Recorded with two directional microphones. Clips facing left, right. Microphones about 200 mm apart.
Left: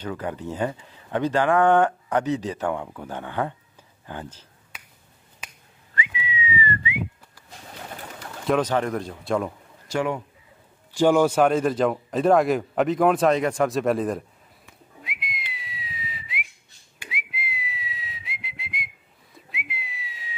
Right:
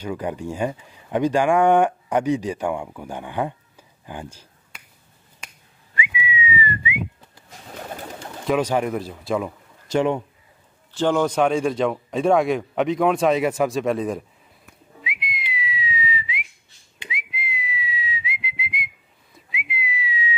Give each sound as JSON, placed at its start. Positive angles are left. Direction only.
{"t": 0.0, "sound": "speech", "side_deg": -15}
{"t": 5.4, "sound": "finger snapping", "side_deg": 5}
{"t": 5.9, "sound": "whistling", "side_deg": -15}
{"t": 8.5, "sound": "speech", "side_deg": -10}
{"t": 9.8, "sound": "a man's voice", "side_deg": -25}
{"t": 10.9, "sound": "speech", "side_deg": 10}
{"t": 14.7, "sound": "whistling", "side_deg": 0}